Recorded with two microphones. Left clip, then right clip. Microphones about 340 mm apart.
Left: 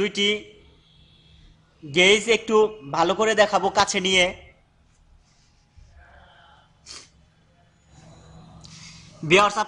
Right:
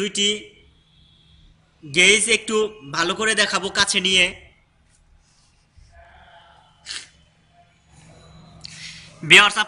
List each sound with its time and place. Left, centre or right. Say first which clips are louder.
0.0 s a man's voice: right 1 dB; left
1.9 s a man's voice: right 2 dB; centre
6.8 s sneeze: right 9 dB; centre
8.5 s a sound: right 9 dB; centre